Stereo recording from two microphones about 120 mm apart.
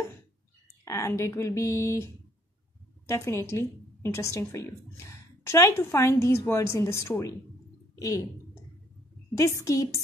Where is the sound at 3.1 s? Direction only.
25° left (ahead or behind).